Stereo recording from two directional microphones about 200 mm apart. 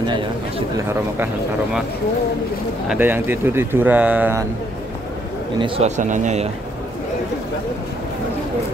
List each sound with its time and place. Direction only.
0.0 s speech: 20° right (ahead or behind)
2.9 s speech: 10° right (ahead or behind)
5.6 s speech: 35° right (ahead or behind)